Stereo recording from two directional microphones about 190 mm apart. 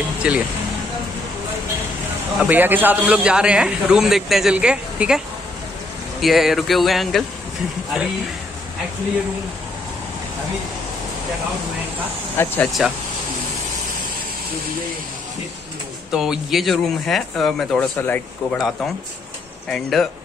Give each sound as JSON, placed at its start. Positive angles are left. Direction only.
{"t": 0.2, "sound": "a man's voice", "side_deg": -5}
{"t": 2.4, "sound": "a man's voice", "side_deg": -10}
{"t": 6.2, "sound": "a man's voice", "side_deg": 0}
{"t": 12.4, "sound": "speech", "side_deg": 10}
{"t": 12.8, "sound": "a man's voice", "side_deg": 0}
{"t": 16.1, "sound": "a man's voice", "side_deg": -5}
{"t": 19.7, "sound": "a man's voice", "side_deg": 0}